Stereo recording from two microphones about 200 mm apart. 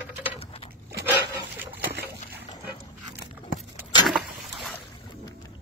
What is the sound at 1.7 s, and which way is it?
Splash, 60° right (ahead or behind).